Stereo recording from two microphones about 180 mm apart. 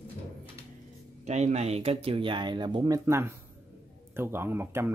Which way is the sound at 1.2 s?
40° right (ahead or behind).